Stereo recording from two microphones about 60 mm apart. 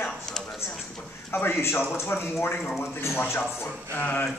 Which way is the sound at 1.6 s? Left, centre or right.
Left.